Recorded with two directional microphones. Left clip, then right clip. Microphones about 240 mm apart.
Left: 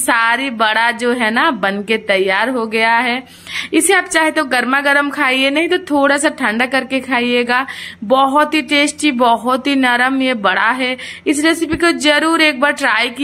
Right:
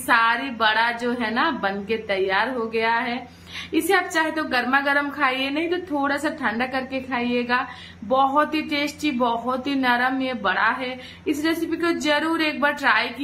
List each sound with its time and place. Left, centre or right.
0.0 s speech: left